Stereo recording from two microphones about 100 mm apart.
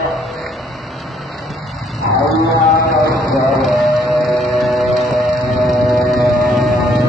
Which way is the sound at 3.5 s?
Centre (ahead or behind).